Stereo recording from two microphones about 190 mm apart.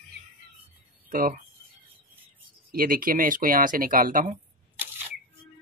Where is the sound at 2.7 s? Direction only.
50° right (ahead or behind).